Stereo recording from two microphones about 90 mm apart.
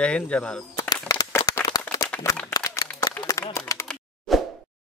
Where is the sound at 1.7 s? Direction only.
45° left (ahead or behind).